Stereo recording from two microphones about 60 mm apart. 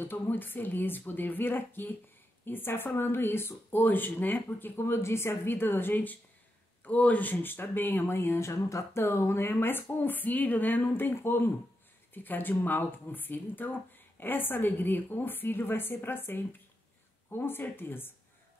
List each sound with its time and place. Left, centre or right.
0.0 s speech: left
9.0 s speech: left